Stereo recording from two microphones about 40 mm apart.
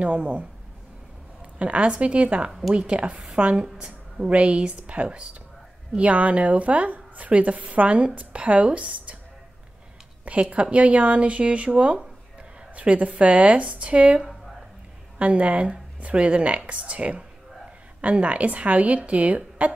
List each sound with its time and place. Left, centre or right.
0.0 s a woman's voice: right
1.6 s a woman's voice: right
10.5 s a woman's voice: right